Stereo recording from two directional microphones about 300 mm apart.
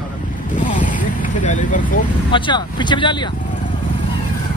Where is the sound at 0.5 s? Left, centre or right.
Left.